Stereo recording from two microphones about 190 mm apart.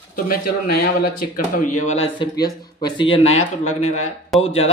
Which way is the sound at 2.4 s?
25° left (ahead or behind).